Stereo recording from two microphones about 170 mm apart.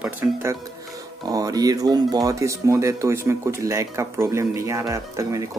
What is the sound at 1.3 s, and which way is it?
Speech, 20° right (ahead or behind).